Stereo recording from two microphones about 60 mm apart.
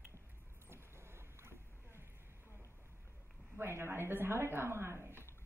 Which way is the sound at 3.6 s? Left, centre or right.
Right.